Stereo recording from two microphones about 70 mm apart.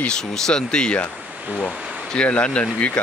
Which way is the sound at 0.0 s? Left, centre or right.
Centre.